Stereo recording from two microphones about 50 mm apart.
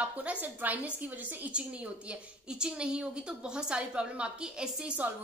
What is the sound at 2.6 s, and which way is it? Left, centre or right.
A woman's voice, centre.